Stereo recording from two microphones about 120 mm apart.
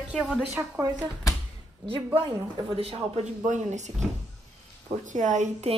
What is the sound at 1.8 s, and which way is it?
Speech, 50° right (ahead or behind).